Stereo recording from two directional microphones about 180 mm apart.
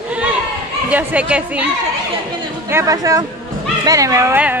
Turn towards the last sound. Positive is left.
turn(degrees=-10)  # may be behind; listen again after turning